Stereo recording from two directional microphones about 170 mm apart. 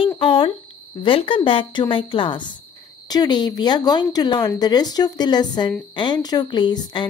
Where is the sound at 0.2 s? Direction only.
30° left (ahead or behind).